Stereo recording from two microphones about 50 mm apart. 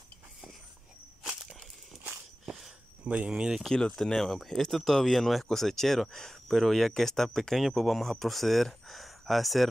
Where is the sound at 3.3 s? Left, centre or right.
Centre.